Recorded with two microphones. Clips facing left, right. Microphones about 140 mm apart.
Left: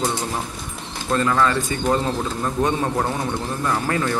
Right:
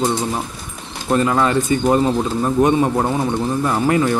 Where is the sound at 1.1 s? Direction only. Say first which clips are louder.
Right 3 dB; 20° right (ahead or behind).